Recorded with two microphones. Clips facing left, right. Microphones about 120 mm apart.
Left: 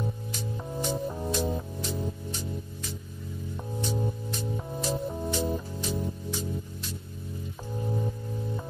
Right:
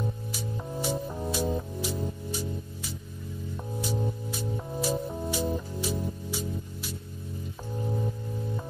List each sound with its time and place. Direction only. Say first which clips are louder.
0.3 s music: even; 5° right (ahead or behind)